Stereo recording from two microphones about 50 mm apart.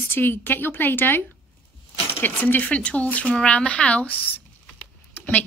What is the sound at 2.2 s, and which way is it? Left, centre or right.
A woman's voice, left.